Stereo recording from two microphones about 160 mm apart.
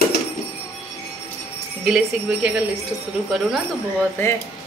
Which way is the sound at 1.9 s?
5° right (ahead or behind).